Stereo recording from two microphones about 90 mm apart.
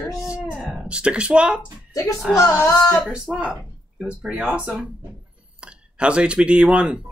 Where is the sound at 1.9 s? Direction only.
40° left (ahead or behind).